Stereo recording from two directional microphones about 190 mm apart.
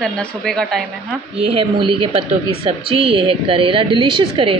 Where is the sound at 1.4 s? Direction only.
30° right (ahead or behind).